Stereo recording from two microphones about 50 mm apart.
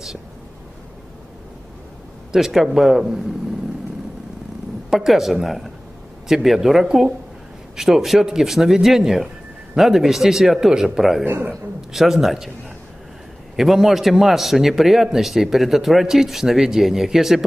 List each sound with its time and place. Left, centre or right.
2.3 s a man's voice: centre
4.8 s a man's voice: centre
13.6 s a man's voice: centre